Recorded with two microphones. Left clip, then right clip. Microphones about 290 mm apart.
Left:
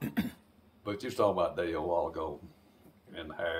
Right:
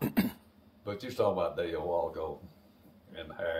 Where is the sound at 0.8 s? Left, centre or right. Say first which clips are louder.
Left 1 dB; centre.